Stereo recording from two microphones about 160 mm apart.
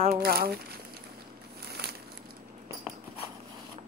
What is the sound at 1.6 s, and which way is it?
Crumpling, 80° right.